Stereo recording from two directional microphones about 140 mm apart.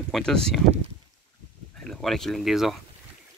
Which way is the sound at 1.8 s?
Centre (ahead or behind).